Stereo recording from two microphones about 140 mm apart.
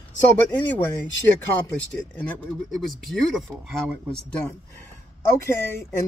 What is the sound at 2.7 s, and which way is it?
Speech, centre (ahead or behind).